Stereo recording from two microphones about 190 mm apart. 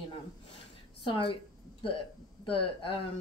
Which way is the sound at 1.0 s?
25° left (ahead or behind).